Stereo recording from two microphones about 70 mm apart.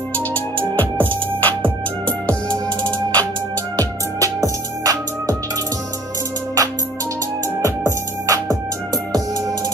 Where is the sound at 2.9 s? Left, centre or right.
Left.